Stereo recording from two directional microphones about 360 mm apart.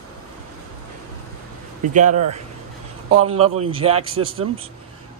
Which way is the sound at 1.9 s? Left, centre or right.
Centre.